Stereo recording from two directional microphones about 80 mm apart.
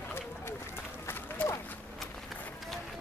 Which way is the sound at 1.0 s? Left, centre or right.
Left.